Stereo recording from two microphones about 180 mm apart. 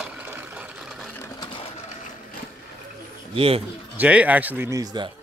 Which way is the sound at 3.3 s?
30° right (ahead or behind).